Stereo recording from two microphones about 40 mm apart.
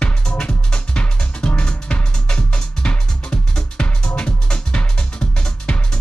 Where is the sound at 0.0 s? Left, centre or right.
Left.